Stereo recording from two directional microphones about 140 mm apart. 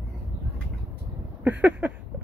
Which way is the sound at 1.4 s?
10° right (ahead or behind).